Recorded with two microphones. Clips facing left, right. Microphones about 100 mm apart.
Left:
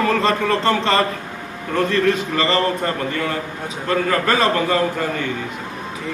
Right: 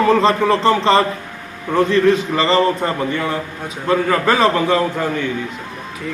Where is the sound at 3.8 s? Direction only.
10° right (ahead or behind).